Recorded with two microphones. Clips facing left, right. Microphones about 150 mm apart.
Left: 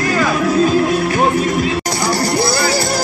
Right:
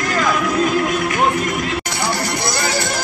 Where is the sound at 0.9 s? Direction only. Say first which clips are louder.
Left 3 dB; 35° left (ahead or behind).